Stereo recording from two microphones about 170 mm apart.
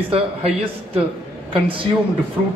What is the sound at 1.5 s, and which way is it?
Speech, 30° right (ahead or behind).